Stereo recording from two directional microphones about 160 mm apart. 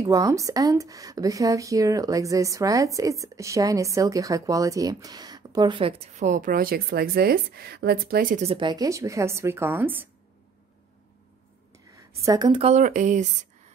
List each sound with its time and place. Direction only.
0.0 s speech: 20° right (ahead or behind); by 8.5 s 60° right (ahead or behind)
8.5 s a woman's voice: 30° right (ahead or behind); by 10.0 s 10° right (ahead or behind)
11.9 s a woman's voice: 20° right (ahead or behind)
12.6 s speech: 50° right (ahead or behind)